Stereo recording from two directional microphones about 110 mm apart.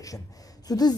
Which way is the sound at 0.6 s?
35° left (ahead or behind).